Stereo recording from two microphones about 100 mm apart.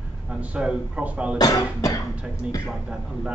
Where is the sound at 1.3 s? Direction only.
40° left (ahead or behind).